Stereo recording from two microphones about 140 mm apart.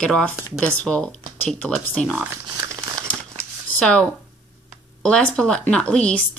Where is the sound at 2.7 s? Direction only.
20° right (ahead or behind).